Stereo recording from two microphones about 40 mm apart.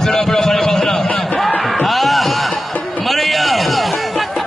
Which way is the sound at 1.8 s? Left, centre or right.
Centre.